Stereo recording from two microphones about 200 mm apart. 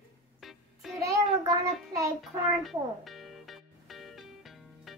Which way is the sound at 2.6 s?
Centre (ahead or behind).